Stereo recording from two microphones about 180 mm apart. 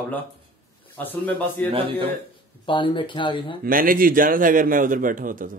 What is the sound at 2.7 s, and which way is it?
Speech, 30° left (ahead or behind).